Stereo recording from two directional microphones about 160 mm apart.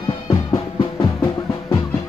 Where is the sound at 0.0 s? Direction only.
30° left (ahead or behind).